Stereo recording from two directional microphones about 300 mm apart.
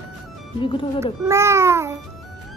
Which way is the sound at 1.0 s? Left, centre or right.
Centre.